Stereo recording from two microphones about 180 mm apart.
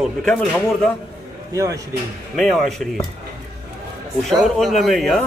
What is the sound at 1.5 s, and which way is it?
Speech, 15° right (ahead or behind).